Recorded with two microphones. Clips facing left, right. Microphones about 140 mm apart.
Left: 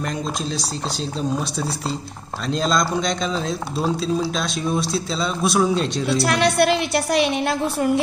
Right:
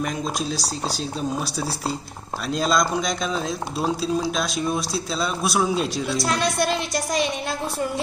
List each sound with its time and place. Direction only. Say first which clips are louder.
2.5 s a man's voice: left 1 dB; 5° right (ahead or behind)
6.1 s a woman's voice: left 6 dB; 65° left (ahead or behind)